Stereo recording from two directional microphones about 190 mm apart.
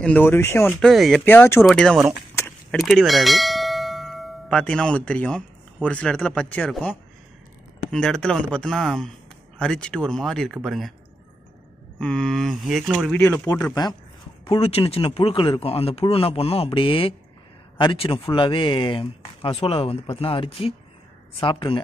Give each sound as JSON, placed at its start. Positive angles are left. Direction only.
{"t": 0.0, "sound": "speech", "side_deg": 10}
{"t": 2.3, "sound": "bell", "side_deg": 5}
{"t": 5.9, "sound": "speech", "side_deg": 5}
{"t": 12.0, "sound": "speech", "side_deg": 5}
{"t": 13.2, "sound": "speech", "side_deg": 10}
{"t": 14.4, "sound": "speech", "side_deg": 30}